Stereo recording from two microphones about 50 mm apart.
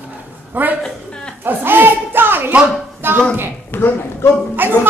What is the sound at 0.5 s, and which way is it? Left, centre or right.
Speech, right.